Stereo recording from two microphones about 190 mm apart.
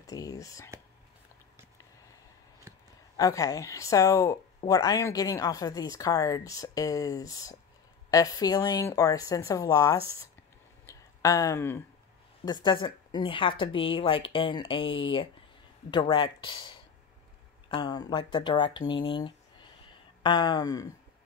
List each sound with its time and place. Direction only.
0.0 s speech: 20° left (ahead or behind)
3.2 s a woman's voice: 15° left (ahead or behind)
10.9 s a sound: 15° left (ahead or behind)
12.6 s a woman's voice: 25° left (ahead or behind)